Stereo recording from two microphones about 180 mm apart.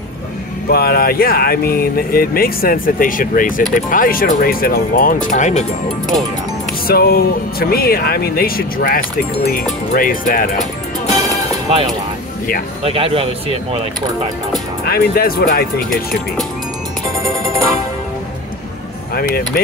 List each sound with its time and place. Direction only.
0.7 s speech: 60° left (ahead or behind); by 5.7 s 40° left (ahead or behind)
6.9 s speech: 60° left (ahead or behind)
12.8 s speech: 30° right (ahead or behind)
14.9 s speech: 55° left (ahead or behind)
19.1 s speech: 55° left (ahead or behind)